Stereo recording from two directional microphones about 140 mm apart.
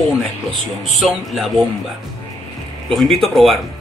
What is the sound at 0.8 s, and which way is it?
Speech, centre (ahead or behind).